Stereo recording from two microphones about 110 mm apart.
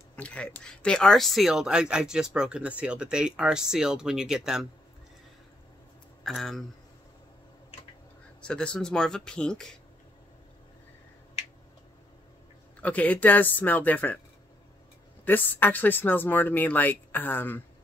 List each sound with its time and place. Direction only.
0.1 s speech: 10° left (ahead or behind); by 4.6 s 5° right (ahead or behind)
6.2 s speech: 5° left (ahead or behind)
8.4 s speech: 10° left (ahead or behind)
12.8 s speech: 15° left (ahead or behind)
15.2 s speech: 15° left (ahead or behind)